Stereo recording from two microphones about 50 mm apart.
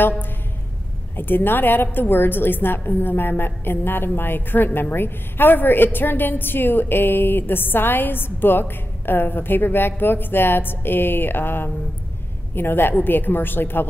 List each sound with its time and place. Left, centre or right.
1.1 s a woman's voice: left